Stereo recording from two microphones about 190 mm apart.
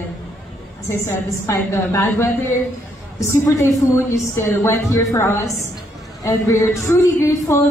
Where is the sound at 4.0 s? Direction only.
15° left (ahead or behind).